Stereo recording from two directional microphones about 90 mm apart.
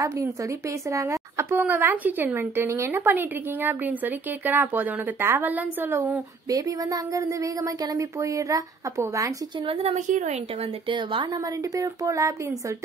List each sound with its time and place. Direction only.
0.0 s a woman's voice: 35° right (ahead or behind)
6.5 s speech: 40° right (ahead or behind)
9.7 s speech: 90° right
10.9 s a woman's voice: 70° right (ahead or behind)
11.3 s speech: 45° right (ahead or behind)